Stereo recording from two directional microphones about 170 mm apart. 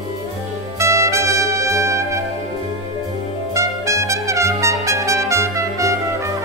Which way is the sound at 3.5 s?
15° right (ahead or behind).